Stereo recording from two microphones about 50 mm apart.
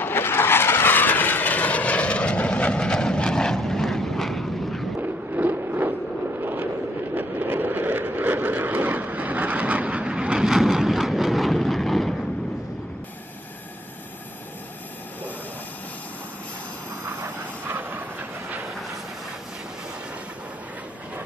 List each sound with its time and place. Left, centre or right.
0.0 s vehicle: left
0.9 s vehicle: left; by 4.8 s centre
5.0 s a sound: right
7.2 s vehicle: right; by 12.2 s centre
17.0 s vehicle: right